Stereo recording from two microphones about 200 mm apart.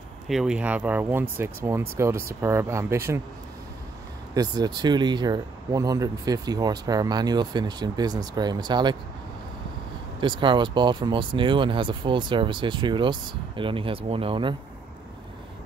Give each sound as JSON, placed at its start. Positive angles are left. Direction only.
{"t": 0.3, "sound": "speech", "side_deg": -5}
{"t": 4.3, "sound": "speech", "side_deg": -20}
{"t": 10.2, "sound": "speech", "side_deg": -25}